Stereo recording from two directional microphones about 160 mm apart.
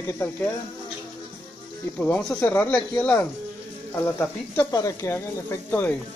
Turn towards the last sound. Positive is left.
turn(degrees=15)  # may be behind; listen again after turning